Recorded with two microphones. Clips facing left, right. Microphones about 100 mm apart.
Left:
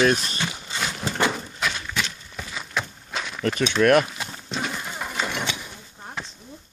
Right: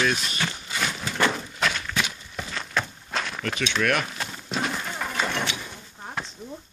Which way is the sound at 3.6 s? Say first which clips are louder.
Left 7 dB; 45° left (ahead or behind).